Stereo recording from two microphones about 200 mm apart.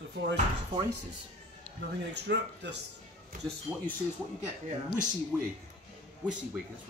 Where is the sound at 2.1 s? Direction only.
60° right (ahead or behind).